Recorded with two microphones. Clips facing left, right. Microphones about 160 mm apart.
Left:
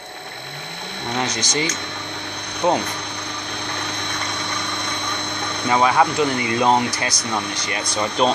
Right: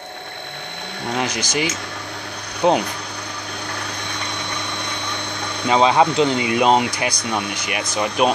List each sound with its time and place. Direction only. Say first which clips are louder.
1.1 s speech: right 1 dB; 10° right (ahead or behind)
2.6 s ratchet: right 2 dB; 20° right (ahead or behind)
5.7 s speech: right 2 dB; 20° right (ahead or behind)